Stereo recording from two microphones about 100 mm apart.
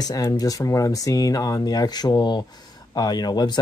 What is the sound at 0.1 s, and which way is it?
Speech, 35° left (ahead or behind).